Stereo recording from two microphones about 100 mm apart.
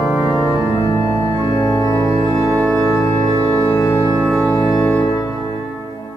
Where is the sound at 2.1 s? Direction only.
60° right (ahead or behind).